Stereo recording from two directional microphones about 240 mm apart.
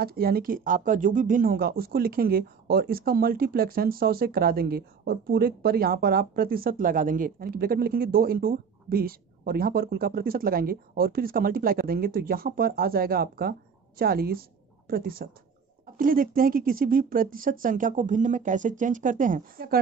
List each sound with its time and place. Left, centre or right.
0.0 s speech: right